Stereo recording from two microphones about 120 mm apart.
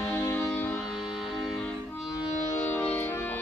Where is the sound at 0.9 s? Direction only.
Centre (ahead or behind).